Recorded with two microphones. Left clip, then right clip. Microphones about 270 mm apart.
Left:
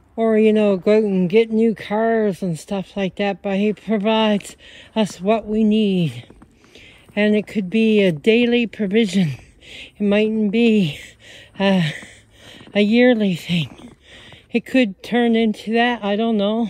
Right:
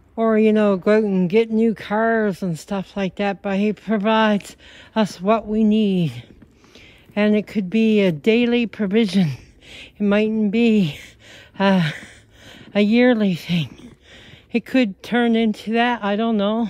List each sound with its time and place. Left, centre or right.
0.1 s speech: right